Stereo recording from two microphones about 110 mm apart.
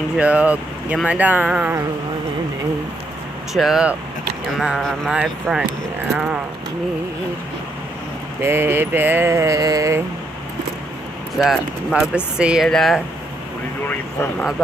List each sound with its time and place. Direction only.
0.2 s speech: 10° right (ahead or behind)
3.5 s speech: 5° right (ahead or behind)
8.4 s a sound: 20° right (ahead or behind)
11.3 s speech: 5° right (ahead or behind)
12.6 s speech: 5° left (ahead or behind)
13.8 s speech: 15° left (ahead or behind)